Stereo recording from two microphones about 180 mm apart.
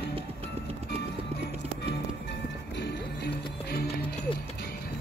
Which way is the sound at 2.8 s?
65° left (ahead or behind).